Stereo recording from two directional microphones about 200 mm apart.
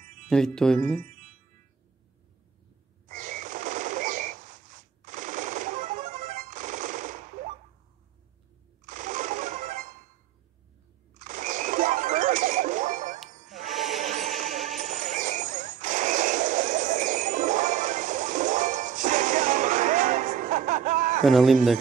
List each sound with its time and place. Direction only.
0.3 s speech: 5° left (ahead or behind)
1.0 s music: 40° right (ahead or behind)
3.1 s a sound: 40° right (ahead or behind)
5.0 s machine gun: 40° right (ahead or behind)
8.8 s sewing machine: 40° right (ahead or behind)
11.1 s a sound: 40° right (ahead or behind)
13.9 s music: 35° right (ahead or behind)
14.8 s horse: 40° right (ahead or behind)
21.2 s speech: centre (ahead or behind)